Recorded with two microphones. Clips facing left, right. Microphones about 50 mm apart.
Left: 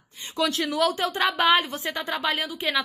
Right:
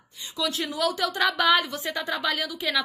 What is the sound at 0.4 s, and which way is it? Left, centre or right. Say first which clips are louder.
Speech: left 4 dB; left.